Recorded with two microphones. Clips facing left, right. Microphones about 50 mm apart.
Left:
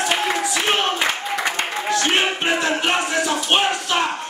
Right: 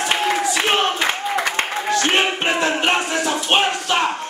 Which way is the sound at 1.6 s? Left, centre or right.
Right.